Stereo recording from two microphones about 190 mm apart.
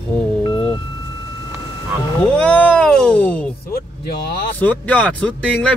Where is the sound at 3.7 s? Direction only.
55° left (ahead or behind).